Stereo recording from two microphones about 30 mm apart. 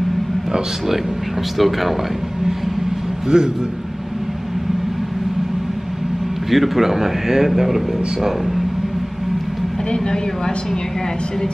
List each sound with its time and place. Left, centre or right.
1.6 s speech: centre
3.3 s a man's voice: right
6.5 s speech: centre
9.8 s a woman's voice: left